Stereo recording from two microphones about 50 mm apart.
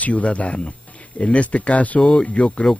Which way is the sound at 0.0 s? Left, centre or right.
Left.